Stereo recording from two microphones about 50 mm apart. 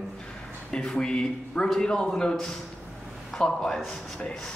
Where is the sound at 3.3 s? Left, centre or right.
Centre.